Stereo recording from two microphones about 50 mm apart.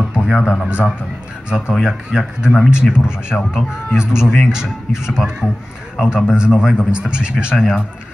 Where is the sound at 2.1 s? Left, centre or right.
Centre.